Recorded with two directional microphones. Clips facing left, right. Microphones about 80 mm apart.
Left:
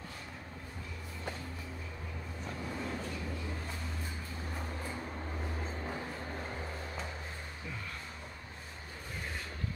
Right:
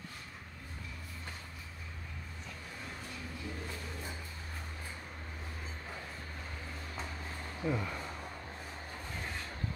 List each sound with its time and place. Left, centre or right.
7.6 s speech: right